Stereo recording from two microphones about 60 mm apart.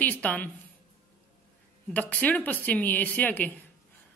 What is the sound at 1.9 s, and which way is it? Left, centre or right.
A man's voice, left.